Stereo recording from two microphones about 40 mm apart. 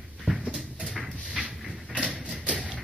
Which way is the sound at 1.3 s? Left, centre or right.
Right.